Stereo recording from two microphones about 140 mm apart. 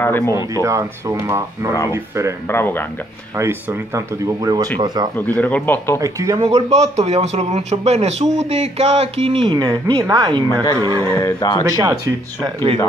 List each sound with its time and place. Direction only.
0.0 s speech: 15° left (ahead or behind)
0.6 s speech: 20° right (ahead or behind)
2.4 s a man's voice: 15° left (ahead or behind)
3.3 s speech: 15° right (ahead or behind)
5.1 s a man's voice: 10° left (ahead or behind)
5.9 s speech: 25° right (ahead or behind)
6.4 s speech: 50° right (ahead or behind)
9.6 s speech: 25° right (ahead or behind)
11.1 s speech: 20° left (ahead or behind)
11.6 s speech: 25° right (ahead or behind)